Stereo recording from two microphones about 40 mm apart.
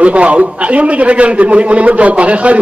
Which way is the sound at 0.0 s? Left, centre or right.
Right.